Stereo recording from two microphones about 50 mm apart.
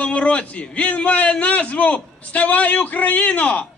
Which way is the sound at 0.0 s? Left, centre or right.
Left.